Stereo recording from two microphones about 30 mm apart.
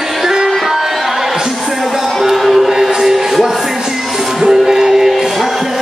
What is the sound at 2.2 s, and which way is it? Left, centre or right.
Music, centre.